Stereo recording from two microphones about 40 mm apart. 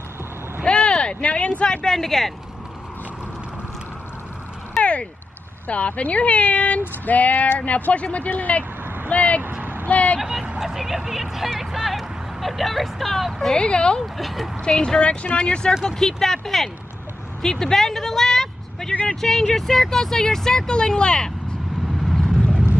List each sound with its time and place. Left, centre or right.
0.7 s speech: left
2.0 s speech: centre
4.8 s a sound: centre
5.7 s speech: left
9.5 s vehicle: right
9.8 s vehicle: left
10.6 s speech: centre
13.6 s speech: left
14.1 s speech: centre
14.6 s speech: left
16.0 s speech: centre
22.0 s boat: centre